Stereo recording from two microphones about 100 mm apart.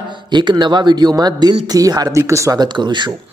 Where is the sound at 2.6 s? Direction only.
50° right (ahead or behind).